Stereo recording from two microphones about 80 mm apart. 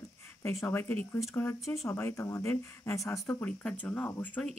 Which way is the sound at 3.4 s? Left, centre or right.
Centre.